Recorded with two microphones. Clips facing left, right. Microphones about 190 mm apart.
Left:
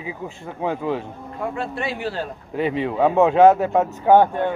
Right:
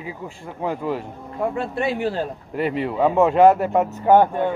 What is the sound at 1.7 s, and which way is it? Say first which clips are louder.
Speech: right 4 dB; 45° right (ahead or behind).